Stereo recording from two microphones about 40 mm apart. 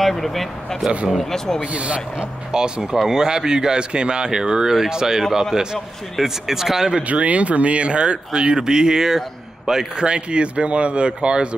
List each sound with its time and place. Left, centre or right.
0.0 s speech: centre
1.7 s speech: right
2.5 s speech: centre
7.0 s speech: right; by 9.2 s centre
9.9 s speech: right